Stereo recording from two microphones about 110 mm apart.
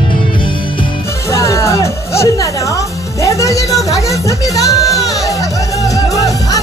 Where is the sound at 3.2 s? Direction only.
30° left (ahead or behind).